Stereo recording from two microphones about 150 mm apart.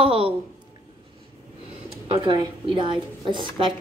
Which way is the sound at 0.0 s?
35° right (ahead or behind).